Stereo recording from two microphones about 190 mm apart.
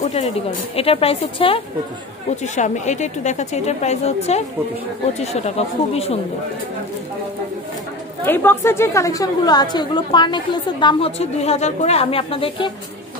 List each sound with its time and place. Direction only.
0.0 s a woman's voice: 35° left (ahead or behind)
8.3 s a woman's voice: 10° left (ahead or behind); by 12.7 s 25° left (ahead or behind)